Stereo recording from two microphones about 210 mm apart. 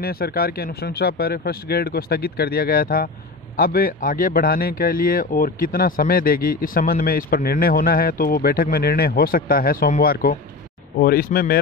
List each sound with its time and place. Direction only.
0.0 s speech: 45° left (ahead or behind)